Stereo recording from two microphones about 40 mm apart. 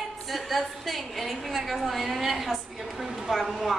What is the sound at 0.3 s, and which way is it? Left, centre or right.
A woman's voice, centre.